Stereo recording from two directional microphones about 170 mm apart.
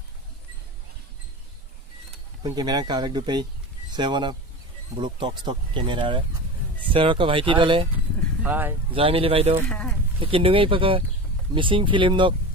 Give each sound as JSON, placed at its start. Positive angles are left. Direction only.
{"t": 2.4, "sound": "speech", "side_deg": -20}
{"t": 8.4, "sound": "speech", "side_deg": -10}
{"t": 8.9, "sound": "speech", "side_deg": -30}
{"t": 9.7, "sound": "speech", "side_deg": 5}
{"t": 10.2, "sound": "speech", "side_deg": -30}